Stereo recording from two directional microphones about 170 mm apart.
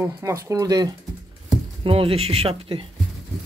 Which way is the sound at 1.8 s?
35° right (ahead or behind).